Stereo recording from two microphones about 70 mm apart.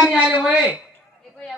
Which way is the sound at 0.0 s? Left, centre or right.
Centre.